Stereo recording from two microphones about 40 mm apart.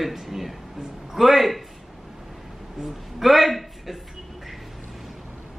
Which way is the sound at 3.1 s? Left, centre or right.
Centre.